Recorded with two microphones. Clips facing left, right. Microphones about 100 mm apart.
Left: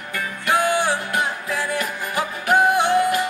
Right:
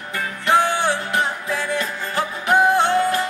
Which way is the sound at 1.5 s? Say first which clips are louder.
Right 1 dB; 15° left (ahead or behind).